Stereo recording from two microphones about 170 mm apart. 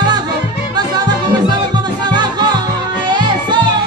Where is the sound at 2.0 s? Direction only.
25° right (ahead or behind).